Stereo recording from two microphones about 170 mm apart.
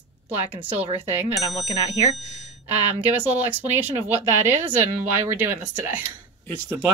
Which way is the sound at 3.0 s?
10° right (ahead or behind).